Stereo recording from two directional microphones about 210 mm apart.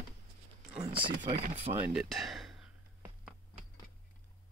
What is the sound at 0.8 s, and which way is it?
Speech, 25° right (ahead or behind).